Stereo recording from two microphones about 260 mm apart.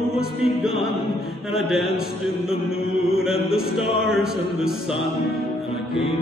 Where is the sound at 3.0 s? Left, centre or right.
Centre.